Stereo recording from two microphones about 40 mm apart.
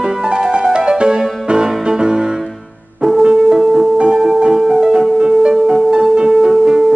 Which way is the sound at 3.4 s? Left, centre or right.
Centre.